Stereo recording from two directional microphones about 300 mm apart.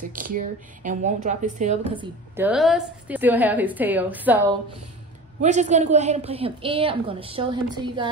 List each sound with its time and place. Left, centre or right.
0.1 s a woman's voice: right
2.3 s a woman's voice: centre
5.4 s a woman's voice: right